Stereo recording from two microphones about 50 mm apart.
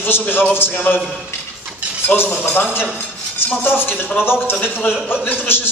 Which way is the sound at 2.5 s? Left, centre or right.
Left.